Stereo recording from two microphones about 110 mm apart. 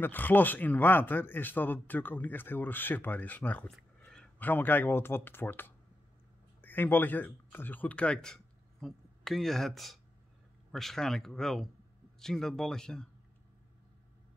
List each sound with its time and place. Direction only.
0.0 s speech: 15° left (ahead or behind)